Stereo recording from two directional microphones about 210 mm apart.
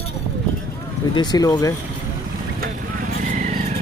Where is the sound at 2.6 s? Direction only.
40° right (ahead or behind).